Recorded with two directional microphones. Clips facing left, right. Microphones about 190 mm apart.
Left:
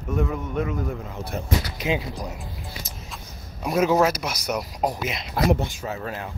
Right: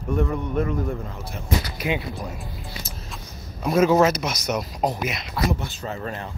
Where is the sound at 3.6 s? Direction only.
10° left (ahead or behind).